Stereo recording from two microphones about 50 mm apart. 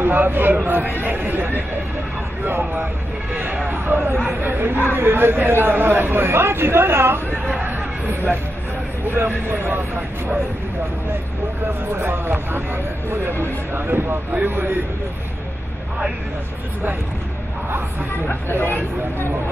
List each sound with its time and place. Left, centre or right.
0.0 s speech: right
3.7 s a man's voice: right
7.6 s chatter: right
9.1 s a man's voice: right
11.9 s a man's voice: right
18.3 s speech: left